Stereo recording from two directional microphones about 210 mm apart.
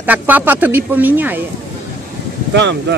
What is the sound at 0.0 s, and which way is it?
A woman's voice, 10° right (ahead or behind).